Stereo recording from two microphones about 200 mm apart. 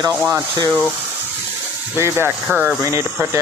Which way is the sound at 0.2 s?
15° right (ahead or behind).